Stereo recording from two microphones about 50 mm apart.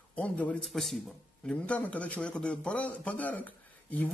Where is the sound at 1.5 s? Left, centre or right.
Left.